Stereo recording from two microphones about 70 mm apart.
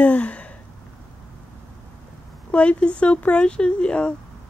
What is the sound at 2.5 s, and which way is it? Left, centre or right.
Speech, centre.